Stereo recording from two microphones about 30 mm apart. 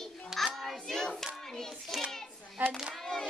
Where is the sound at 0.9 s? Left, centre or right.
Centre.